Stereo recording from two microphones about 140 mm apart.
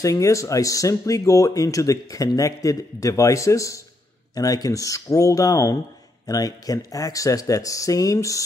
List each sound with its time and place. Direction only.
0.0 s speech: 25° left (ahead or behind)